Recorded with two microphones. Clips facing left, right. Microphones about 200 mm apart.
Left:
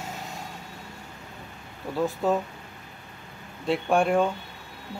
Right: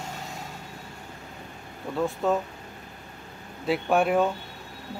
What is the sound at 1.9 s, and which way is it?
Speech, centre (ahead or behind).